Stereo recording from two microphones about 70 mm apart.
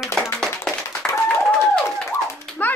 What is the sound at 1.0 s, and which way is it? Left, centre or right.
Applause, centre.